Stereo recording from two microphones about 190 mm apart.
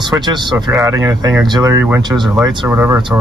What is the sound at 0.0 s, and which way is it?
Speech, 25° right (ahead or behind).